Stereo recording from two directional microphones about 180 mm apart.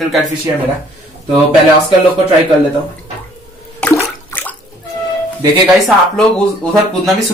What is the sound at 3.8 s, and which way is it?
Toilet flush, 10° left (ahead or behind).